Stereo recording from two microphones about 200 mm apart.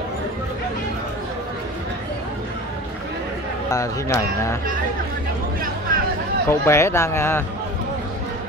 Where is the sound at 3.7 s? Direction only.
15° left (ahead or behind).